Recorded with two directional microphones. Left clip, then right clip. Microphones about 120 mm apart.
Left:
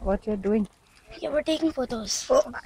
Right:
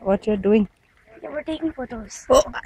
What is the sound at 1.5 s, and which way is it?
Speech, 15° left (ahead or behind).